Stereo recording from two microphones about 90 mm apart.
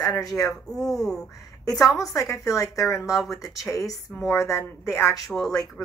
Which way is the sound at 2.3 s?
40° left (ahead or behind).